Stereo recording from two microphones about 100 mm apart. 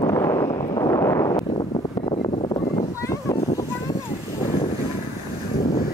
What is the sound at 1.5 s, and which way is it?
Wind noise, 80° left.